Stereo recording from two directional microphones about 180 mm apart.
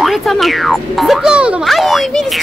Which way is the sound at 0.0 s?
Centre (ahead or behind).